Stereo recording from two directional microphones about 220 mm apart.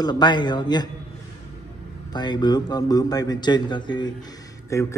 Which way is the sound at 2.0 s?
20° left (ahead or behind).